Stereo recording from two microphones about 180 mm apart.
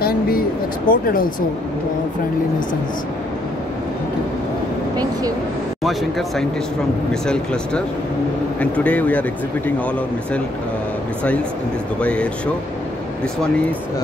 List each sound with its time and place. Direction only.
0.0 s a sound: 55° left (ahead or behind)
5.9 s speech: centre (ahead or behind)
8.5 s speech: 10° left (ahead or behind)
12.0 s speech: 5° left (ahead or behind)